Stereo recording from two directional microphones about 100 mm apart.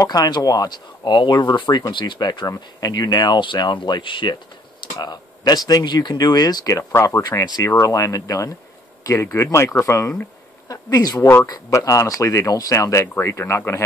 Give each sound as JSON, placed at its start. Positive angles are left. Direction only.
{"t": 0.0, "sound": "speech", "side_deg": 40}
{"t": 4.9, "sound": "speech", "side_deg": 45}
{"t": 7.2, "sound": "speech", "side_deg": 40}